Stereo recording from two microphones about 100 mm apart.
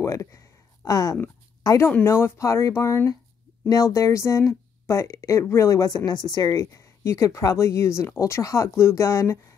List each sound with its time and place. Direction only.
0.0 s speech: 30° left (ahead or behind)
6.6 s speech: 30° left (ahead or behind)